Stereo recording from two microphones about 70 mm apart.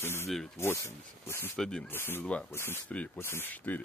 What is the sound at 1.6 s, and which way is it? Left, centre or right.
Speech, centre.